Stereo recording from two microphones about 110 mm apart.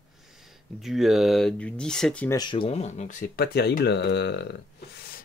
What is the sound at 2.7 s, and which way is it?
Speech, 90° left.